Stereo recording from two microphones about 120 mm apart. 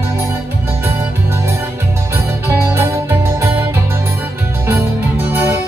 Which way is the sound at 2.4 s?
25° right (ahead or behind).